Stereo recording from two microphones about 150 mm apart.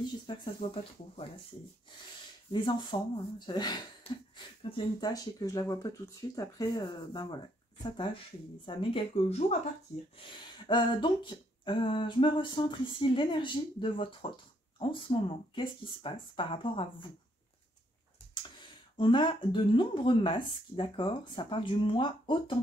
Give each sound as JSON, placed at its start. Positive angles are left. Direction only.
{"t": 0.0, "sound": "speech", "side_deg": 30}
{"t": 2.5, "sound": "speech", "side_deg": 30}
{"t": 4.1, "sound": "speech", "side_deg": 40}
{"t": 5.1, "sound": "speech", "side_deg": 25}
{"t": 10.2, "sound": "speech", "side_deg": 30}
{"t": 18.3, "sound": "speech", "side_deg": 30}